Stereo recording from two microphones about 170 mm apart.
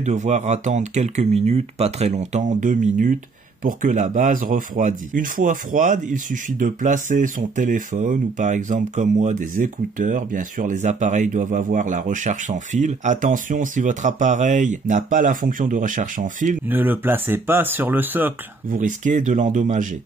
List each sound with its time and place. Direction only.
0.0 s speech: 45° right (ahead or behind)
16.6 s speech: 10° right (ahead or behind)
18.7 s speech: 50° right (ahead or behind)